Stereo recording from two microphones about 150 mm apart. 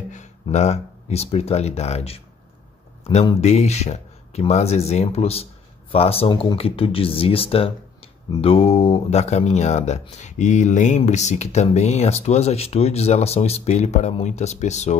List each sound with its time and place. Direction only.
0.1 s speech: 50° left (ahead or behind)
3.0 s a sound: 45° left (ahead or behind)
3.3 s speech: 45° left (ahead or behind)